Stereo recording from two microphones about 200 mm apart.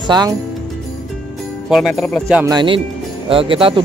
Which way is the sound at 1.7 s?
Centre (ahead or behind).